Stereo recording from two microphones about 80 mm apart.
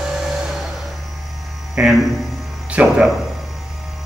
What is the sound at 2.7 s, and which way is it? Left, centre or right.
Speech, centre.